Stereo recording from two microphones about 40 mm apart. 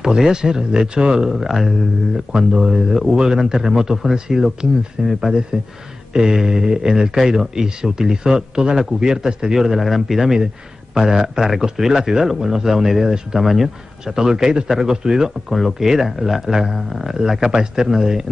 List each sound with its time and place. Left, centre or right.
0.0 s speech: centre
1.5 s speech: centre
15.5 s speech: centre
15.9 s speech: centre